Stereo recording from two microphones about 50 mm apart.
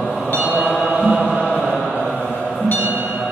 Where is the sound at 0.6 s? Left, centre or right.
Right.